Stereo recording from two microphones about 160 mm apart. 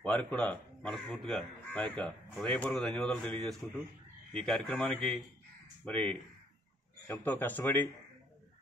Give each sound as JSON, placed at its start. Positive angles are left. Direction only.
{"t": 0.0, "sound": "speech", "side_deg": 5}